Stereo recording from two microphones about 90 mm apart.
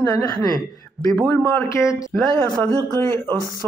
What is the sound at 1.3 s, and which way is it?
Speech, 25° left (ahead or behind).